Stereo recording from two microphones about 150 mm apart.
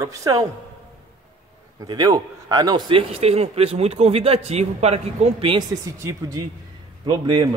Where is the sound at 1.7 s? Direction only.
25° right (ahead or behind).